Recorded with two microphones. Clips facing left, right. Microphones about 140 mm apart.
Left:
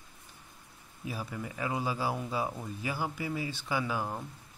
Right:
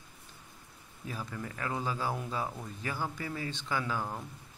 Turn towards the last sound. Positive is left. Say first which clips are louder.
# left 2 dB
turn(degrees=10)  # may be behind; listen again after turning